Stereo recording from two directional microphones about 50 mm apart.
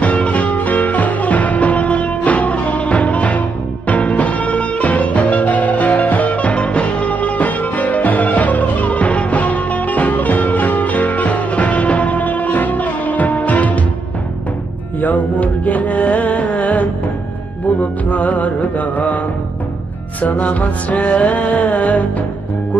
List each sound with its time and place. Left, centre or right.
0.0 s music: left
15.0 s music: left
20.2 s music: left